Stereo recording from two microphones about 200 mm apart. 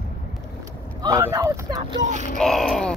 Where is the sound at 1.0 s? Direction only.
15° right (ahead or behind).